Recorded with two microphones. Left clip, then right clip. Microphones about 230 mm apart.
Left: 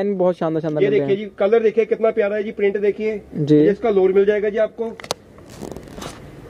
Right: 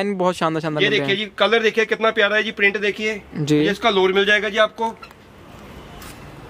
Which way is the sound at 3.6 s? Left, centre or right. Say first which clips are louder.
Left 1 dB; right.